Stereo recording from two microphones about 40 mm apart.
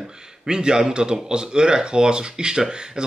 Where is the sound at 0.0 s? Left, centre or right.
Centre.